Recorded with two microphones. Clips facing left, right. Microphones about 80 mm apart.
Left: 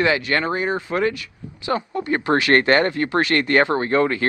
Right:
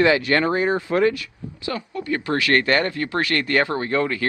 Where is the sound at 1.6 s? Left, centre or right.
Left.